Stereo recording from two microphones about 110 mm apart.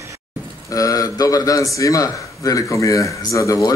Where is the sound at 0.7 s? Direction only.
30° left (ahead or behind).